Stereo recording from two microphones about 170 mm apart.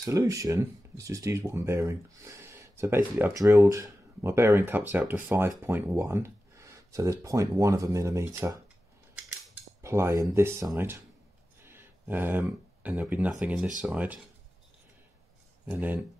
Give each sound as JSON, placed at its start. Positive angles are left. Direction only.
{"t": 0.0, "sound": "speech", "side_deg": -20}
{"t": 9.8, "sound": "speech", "side_deg": -15}
{"t": 15.6, "sound": "speech", "side_deg": -10}